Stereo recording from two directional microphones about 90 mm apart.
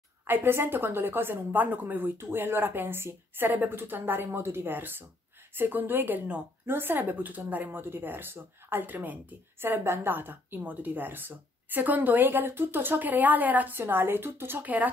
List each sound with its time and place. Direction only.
0.3 s speech: 25° right (ahead or behind)